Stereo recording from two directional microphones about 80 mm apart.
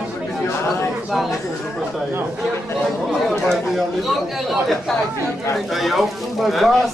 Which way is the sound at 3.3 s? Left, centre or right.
Centre.